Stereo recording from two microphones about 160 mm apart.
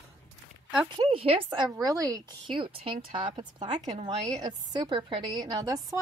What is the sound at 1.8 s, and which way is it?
A woman's voice, 20° right (ahead or behind).